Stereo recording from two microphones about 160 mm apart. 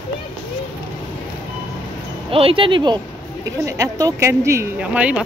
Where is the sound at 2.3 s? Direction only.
35° right (ahead or behind).